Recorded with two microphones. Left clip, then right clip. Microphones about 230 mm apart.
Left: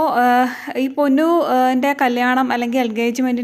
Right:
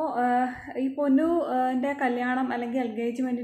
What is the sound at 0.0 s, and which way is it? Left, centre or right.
A woman's voice, left.